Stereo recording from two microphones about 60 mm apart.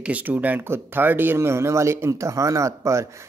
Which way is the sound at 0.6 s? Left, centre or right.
Right.